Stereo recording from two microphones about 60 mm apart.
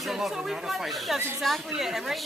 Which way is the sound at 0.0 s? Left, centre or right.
Centre.